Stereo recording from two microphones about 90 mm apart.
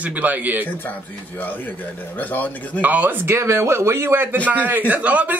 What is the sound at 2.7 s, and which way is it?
Speech, 15° right (ahead or behind).